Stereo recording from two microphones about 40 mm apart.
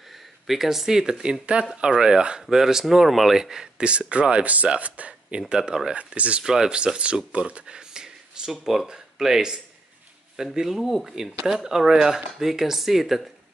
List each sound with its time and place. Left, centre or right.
0.1 s speech: centre
1.4 s speech: right; by 3.6 s centre
3.7 s speech: right
5.5 s speech: right
5.9 s speech: right
6.4 s speech: centre
7.3 s a sound: right; by 8.8 s centre
8.8 s speech: centre